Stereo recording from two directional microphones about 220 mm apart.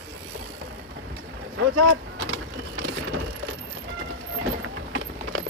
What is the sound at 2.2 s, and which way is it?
Vehicle, 60° right (ahead or behind).